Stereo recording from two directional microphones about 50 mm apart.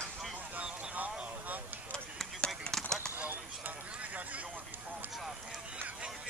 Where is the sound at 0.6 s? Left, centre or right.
Right.